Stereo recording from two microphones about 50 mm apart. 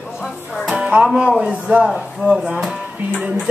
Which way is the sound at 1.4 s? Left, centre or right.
Right.